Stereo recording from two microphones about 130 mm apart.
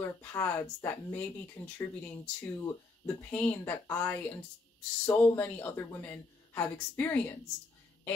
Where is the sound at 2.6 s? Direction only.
25° left (ahead or behind).